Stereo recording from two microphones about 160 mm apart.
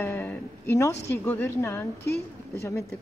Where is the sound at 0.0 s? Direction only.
15° left (ahead or behind).